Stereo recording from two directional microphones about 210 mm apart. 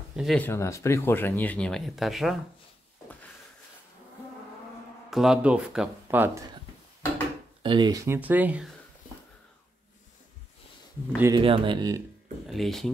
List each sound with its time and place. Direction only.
0.1 s speech: centre (ahead or behind)
5.1 s speech: 5° right (ahead or behind)
7.6 s speech: 20° right (ahead or behind)
11.1 s speech: 15° right (ahead or behind)
11.4 s speech: 25° right (ahead or behind)
12.4 s speech: centre (ahead or behind)